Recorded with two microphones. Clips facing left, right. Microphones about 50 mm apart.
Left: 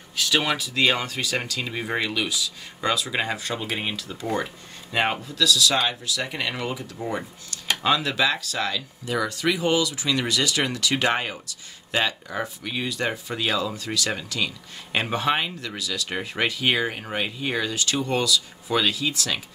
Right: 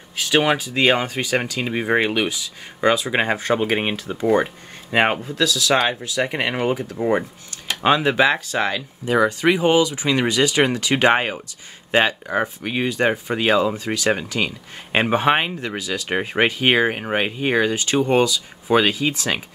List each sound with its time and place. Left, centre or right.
0.1 s speech: right